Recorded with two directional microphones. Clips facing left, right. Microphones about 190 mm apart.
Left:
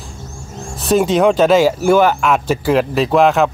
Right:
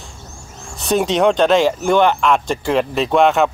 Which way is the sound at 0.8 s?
Centre (ahead or behind).